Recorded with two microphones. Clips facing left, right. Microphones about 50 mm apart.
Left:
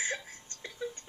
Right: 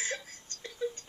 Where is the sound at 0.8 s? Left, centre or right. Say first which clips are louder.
Right 4 dB; centre.